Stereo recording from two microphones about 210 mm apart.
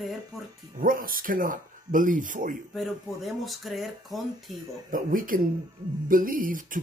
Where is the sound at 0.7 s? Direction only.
40° right (ahead or behind).